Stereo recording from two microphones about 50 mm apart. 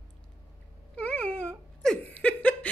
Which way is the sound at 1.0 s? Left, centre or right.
Left.